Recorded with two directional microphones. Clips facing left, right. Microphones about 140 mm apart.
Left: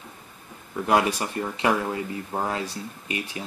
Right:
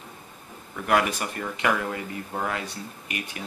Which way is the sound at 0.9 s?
25° left (ahead or behind).